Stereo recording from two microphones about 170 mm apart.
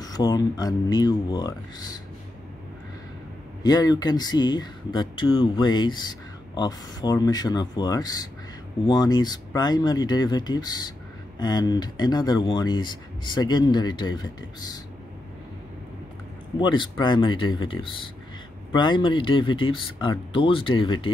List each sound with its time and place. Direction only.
0.0 s speech: 20° left (ahead or behind)
3.6 s speech: 25° left (ahead or behind)
16.5 s speech: 25° left (ahead or behind)